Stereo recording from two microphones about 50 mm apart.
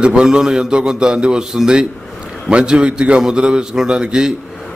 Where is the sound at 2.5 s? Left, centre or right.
Centre.